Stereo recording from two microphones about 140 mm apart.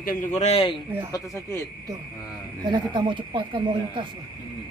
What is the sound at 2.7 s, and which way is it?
Speech, 35° right (ahead or behind).